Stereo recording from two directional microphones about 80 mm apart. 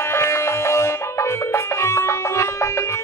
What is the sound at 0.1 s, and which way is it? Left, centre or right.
Music, left.